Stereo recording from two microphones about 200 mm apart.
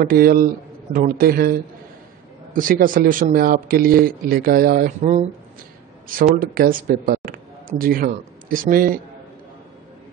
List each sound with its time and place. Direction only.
0.0 s speech: 45° right (ahead or behind)